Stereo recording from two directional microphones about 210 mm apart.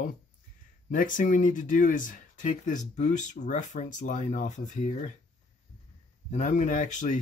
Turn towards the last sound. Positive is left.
turn(degrees=35)  # may be behind; listen again after turning